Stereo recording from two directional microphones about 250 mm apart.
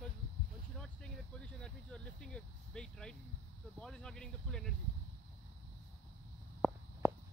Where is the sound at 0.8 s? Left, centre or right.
Centre.